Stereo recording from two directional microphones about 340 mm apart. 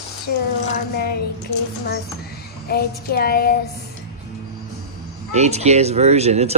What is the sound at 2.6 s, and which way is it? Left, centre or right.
Speech, left.